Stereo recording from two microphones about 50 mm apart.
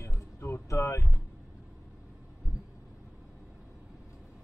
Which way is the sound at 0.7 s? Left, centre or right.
Left.